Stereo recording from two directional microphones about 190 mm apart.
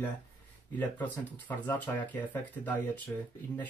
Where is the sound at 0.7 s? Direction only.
10° left (ahead or behind).